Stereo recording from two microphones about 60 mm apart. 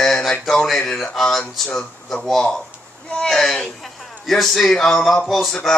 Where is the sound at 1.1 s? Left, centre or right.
Centre.